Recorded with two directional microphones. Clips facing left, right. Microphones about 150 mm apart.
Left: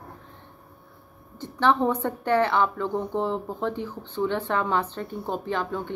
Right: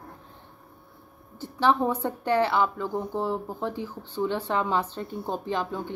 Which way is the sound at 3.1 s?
20° left (ahead or behind).